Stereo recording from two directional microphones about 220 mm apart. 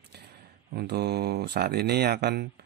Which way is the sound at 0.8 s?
50° right (ahead or behind).